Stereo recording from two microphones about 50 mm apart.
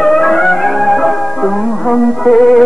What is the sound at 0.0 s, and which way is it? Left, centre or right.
Music, centre.